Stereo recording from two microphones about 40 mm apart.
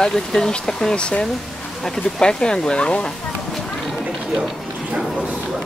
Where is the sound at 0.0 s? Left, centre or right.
Centre.